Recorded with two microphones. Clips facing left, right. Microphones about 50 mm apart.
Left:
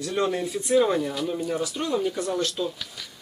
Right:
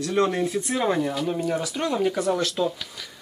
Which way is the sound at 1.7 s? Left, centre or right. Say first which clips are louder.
Right 2 dB; right.